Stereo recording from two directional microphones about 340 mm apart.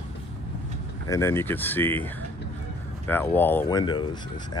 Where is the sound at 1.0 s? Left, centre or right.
Centre.